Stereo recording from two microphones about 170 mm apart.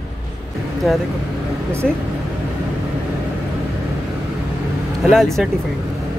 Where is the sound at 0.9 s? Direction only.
Centre (ahead or behind).